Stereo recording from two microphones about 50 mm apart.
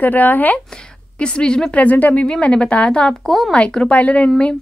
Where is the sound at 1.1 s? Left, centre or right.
Left.